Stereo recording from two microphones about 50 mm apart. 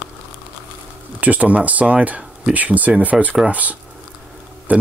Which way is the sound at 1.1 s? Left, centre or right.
Right.